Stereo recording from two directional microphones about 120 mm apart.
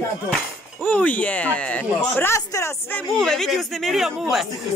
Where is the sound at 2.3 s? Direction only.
20° left (ahead or behind).